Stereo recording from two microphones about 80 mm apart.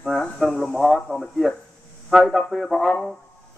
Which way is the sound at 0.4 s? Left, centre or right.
Centre.